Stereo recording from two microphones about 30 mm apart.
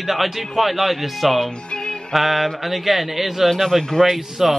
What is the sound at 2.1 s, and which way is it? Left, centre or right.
A man's voice, centre.